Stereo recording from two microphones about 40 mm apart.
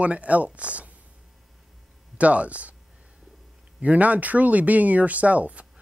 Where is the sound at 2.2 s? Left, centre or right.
Right.